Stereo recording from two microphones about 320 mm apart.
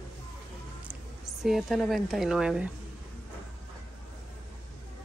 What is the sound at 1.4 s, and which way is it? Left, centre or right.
A woman's voice, centre.